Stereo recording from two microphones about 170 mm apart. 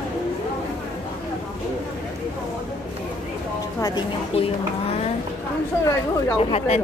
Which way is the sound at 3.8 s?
30° left (ahead or behind).